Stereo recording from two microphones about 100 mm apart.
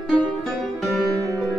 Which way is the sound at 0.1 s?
Centre (ahead or behind).